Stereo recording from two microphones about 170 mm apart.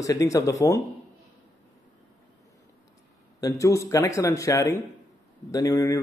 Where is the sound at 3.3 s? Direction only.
20° left (ahead or behind).